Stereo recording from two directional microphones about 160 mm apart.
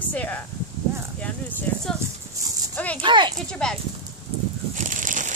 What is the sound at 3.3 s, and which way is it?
Speech, 5° left (ahead or behind).